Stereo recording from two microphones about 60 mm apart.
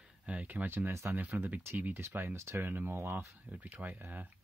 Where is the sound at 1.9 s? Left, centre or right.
Right.